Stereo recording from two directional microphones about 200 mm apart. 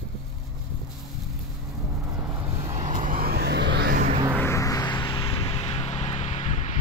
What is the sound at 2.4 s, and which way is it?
Vehicle, 35° right (ahead or behind).